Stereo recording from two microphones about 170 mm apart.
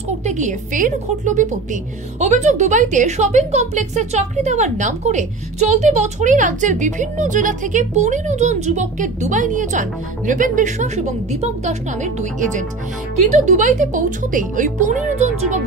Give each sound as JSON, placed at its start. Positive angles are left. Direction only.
{"t": 0.2, "sound": "a woman's voice", "side_deg": -45}